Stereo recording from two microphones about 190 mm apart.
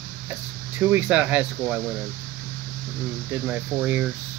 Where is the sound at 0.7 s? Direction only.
10° right (ahead or behind).